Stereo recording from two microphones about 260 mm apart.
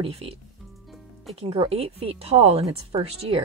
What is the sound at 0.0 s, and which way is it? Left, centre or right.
A woman's voice, right.